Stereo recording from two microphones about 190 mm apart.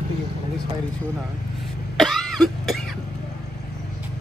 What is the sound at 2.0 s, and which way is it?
Cough, centre (ahead or behind).